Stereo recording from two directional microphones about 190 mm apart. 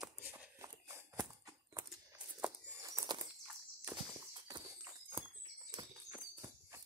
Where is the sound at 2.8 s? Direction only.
15° right (ahead or behind).